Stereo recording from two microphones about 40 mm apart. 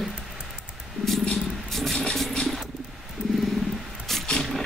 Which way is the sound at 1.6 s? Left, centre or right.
Centre.